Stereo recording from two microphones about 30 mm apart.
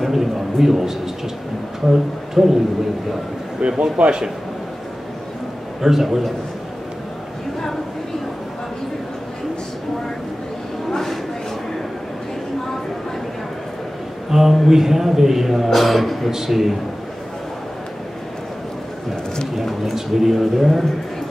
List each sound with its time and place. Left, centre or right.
0.0 s a sound: centre
1.9 s speech: centre
3.6 s speech: right
5.8 s a man's voice: centre
10.9 s a sound: centre
14.3 s a man's voice: centre
19.5 s speech: centre